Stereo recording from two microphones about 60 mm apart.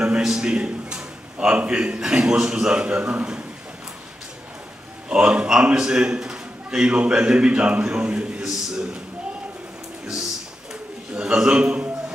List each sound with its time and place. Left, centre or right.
0.2 s a man's voice: centre
5.1 s a man's voice: centre
11.1 s a man's voice: centre